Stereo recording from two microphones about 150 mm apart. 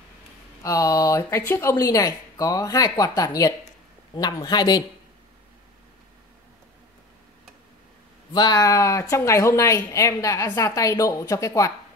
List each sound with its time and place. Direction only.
0.6 s speech: 20° left (ahead or behind)
8.3 s speech: 30° left (ahead or behind)